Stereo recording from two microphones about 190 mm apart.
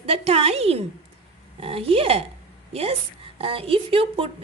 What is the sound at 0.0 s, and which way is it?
A woman's voice, 30° right (ahead or behind).